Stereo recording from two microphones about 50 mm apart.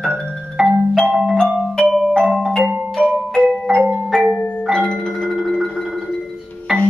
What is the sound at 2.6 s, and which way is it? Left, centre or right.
Music, right.